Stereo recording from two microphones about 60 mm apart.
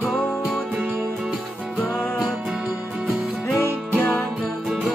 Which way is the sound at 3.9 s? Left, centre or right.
Left.